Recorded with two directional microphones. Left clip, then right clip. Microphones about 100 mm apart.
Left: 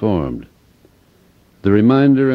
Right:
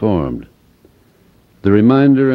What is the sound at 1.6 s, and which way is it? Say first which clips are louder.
Speech: right 2 dB; 40° right (ahead or behind).